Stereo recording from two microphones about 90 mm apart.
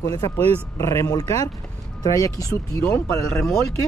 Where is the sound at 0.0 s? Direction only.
45° left (ahead or behind).